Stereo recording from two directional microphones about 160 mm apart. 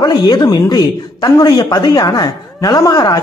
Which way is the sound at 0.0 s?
25° left (ahead or behind).